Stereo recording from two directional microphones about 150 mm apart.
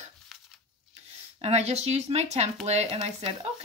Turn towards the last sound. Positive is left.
turn(degrees=-45)  # may be behind; listen again after turning